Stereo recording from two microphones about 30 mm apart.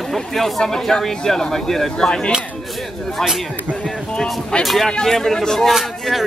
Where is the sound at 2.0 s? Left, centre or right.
Left.